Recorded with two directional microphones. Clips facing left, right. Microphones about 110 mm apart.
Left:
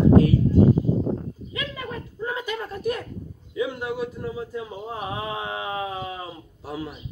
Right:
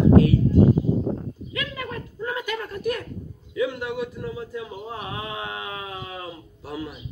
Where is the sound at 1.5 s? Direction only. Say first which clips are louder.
Right 1 dB; 25° left (ahead or behind).